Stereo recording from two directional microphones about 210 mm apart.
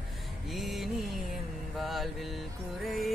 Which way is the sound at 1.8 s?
Centre (ahead or behind).